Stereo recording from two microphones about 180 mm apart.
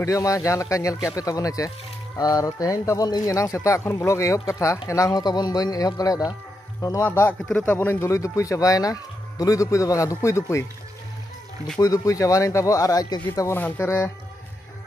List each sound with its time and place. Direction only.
0.0 s speech: 15° left (ahead or behind)
11.8 s speech: 20° left (ahead or behind)